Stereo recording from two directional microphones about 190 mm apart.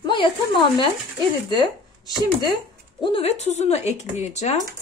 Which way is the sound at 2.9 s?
25° left (ahead or behind).